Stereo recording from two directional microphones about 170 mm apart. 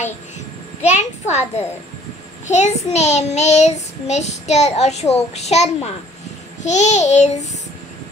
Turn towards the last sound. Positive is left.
turn(degrees=40)  # may be behind; listen again after turning